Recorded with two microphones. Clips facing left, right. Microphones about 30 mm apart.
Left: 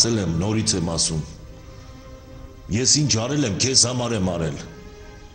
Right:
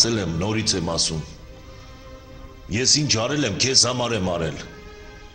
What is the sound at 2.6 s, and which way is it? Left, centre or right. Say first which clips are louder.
A man's voice: even; centre.